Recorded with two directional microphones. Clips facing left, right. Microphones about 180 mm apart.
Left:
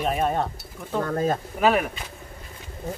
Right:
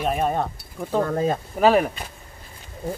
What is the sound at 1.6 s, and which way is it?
Speech, 30° right (ahead or behind).